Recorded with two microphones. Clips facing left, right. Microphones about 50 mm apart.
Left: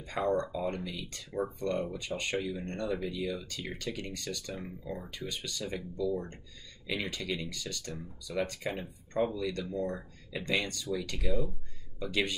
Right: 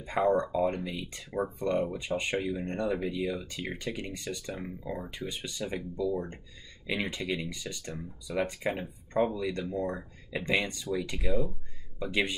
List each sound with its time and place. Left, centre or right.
0.0 s speech: centre
11.2 s speech: centre
12.0 s speech: right